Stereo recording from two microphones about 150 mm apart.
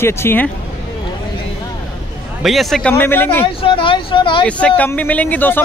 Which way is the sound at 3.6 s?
35° left (ahead or behind).